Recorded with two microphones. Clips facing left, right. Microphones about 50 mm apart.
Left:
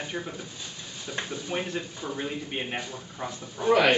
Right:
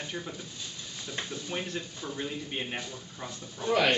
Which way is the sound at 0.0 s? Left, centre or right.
Centre.